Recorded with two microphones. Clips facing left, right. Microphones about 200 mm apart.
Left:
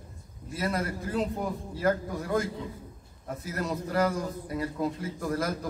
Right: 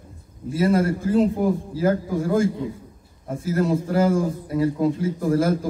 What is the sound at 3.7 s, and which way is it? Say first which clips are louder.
Speech: right 5 dB; 25° right (ahead or behind).